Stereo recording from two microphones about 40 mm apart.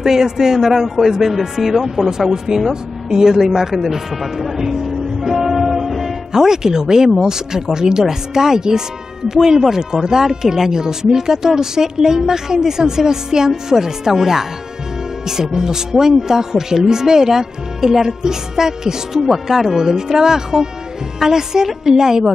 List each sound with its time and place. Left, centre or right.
0.0 s speech: centre
4.6 s music: centre
7.1 s speech: centre